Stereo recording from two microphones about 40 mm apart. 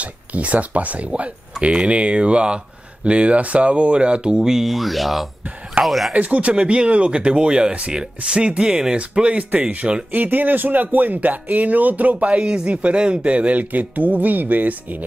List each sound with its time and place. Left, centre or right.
0.0 s speech: right
4.5 s speech: centre
6.1 s speech: right
10.1 s speech: right